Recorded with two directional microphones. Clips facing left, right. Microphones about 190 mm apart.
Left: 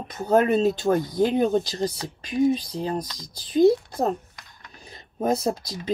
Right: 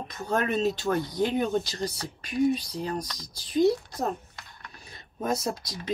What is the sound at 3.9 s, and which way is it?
Speech, 30° left (ahead or behind).